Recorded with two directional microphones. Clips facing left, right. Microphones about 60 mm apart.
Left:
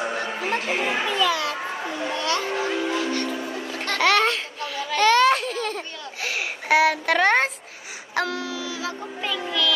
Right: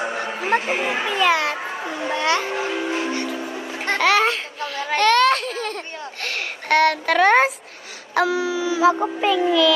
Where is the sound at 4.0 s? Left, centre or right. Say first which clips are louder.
Right 1 dB; centre.